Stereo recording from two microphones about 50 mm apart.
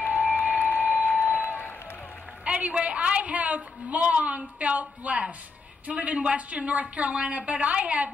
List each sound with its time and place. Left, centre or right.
0.0 s a sound: left
1.4 s run: left
2.4 s a woman's voice: right